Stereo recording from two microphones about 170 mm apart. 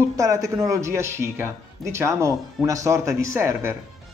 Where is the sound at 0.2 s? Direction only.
20° right (ahead or behind).